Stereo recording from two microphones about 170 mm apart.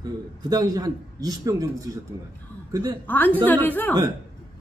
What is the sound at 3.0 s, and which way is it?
Speech, 10° left (ahead or behind).